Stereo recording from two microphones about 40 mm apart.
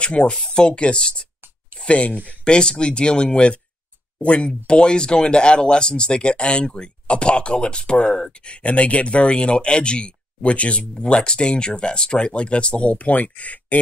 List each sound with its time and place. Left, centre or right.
0.0 s speech: left
2.4 s speech: left